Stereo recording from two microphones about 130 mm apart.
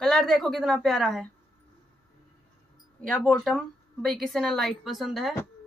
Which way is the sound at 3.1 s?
5° left (ahead or behind).